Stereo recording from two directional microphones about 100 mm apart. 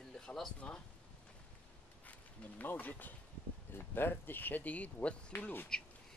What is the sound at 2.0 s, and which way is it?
Speech, 15° left (ahead or behind).